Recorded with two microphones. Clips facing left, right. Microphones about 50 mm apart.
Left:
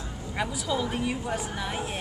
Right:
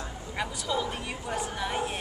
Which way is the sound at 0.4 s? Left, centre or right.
Centre.